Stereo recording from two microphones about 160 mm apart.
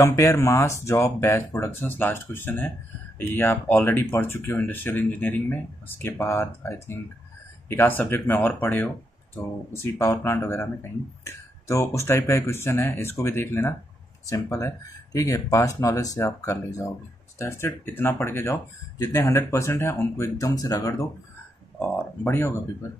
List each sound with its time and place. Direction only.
0.0 s speech: 20° left (ahead or behind)
21.7 s a sound: 10° left (ahead or behind)
22.2 s speech: 15° left (ahead or behind)